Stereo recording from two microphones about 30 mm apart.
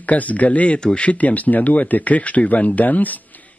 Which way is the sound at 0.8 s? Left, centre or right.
Left.